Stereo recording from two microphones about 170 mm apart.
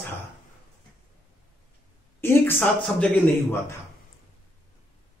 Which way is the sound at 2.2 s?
15° left (ahead or behind).